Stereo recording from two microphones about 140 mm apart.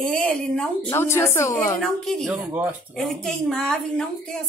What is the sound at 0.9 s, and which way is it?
Speech, 20° left (ahead or behind).